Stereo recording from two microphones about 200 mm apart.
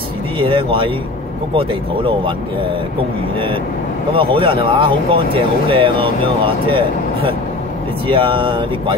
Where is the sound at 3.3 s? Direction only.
25° right (ahead or behind).